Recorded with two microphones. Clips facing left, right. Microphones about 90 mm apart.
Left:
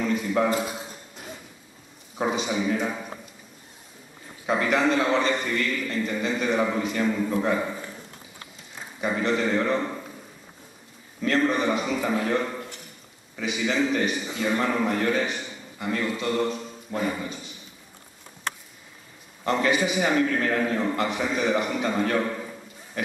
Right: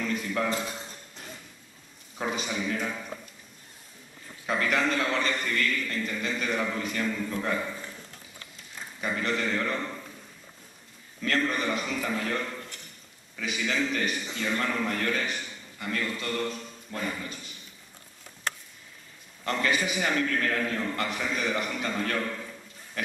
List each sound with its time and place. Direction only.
0.3 s a sound: 15° left (ahead or behind)
2.2 s a man's voice: 15° left (ahead or behind)
4.5 s a man's voice: 15° left (ahead or behind)
7.1 s a man's voice: 15° left (ahead or behind)
9.1 s a man's voice: 15° left (ahead or behind)
11.3 s a man's voice: 20° left (ahead or behind)
19.4 s a man's voice: 10° left (ahead or behind)
21.9 s a sound: 15° left (ahead or behind)